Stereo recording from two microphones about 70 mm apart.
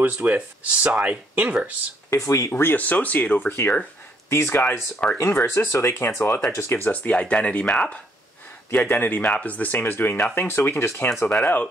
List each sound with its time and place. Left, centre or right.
0.0 s speech: right
2.0 s speech: left
2.5 s speech: left
6.9 s speech: centre
8.7 s speech: left
11.2 s speech: left